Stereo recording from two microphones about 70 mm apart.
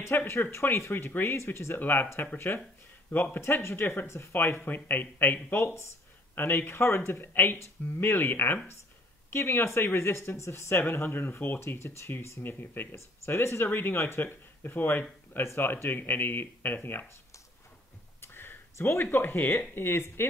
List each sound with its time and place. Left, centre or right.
0.1 s speech: left
1.8 s speech: left
12.9 s speech: left
18.2 s a sound: left
19.1 s speech: left